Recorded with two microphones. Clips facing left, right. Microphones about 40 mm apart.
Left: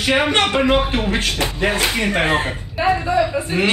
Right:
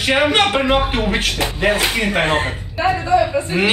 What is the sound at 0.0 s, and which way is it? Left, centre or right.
A woman's voice, centre.